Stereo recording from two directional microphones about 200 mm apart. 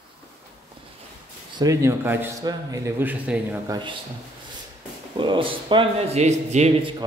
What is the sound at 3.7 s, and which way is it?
Speech, 20° right (ahead or behind).